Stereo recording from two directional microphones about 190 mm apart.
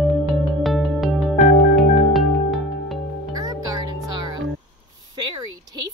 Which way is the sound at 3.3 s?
20° right (ahead or behind).